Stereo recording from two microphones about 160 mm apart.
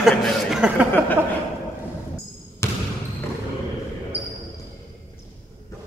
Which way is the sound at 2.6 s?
15° left (ahead or behind).